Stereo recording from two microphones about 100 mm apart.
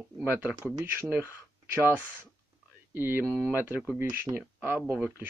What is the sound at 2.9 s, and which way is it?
Speech, 20° right (ahead or behind).